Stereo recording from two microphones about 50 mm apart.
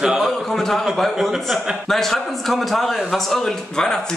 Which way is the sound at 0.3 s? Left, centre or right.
Centre.